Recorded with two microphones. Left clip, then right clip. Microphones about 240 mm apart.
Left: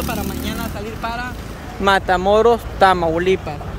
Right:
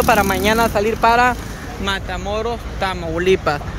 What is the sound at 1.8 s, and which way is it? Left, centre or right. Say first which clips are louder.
Speech: left 8 dB; centre.